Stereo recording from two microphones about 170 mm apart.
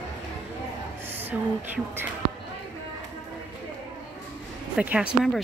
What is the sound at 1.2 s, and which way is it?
Speech, 10° right (ahead or behind).